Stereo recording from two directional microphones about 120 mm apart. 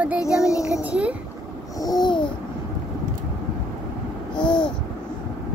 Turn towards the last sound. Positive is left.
turn(degrees=40)  # may be behind; listen again after turning